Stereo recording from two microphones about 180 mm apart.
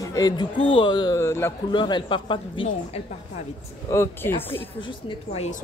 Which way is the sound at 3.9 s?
15° left (ahead or behind).